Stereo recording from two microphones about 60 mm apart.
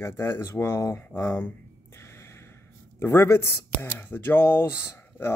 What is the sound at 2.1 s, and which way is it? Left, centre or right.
Gasp, left.